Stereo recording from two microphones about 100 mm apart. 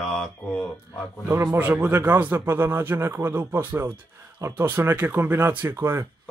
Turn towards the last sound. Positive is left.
turn(degrees=-25)  # may be behind; listen again after turning